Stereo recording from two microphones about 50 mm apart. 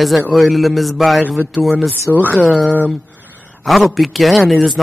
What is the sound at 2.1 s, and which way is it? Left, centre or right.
Speech, left.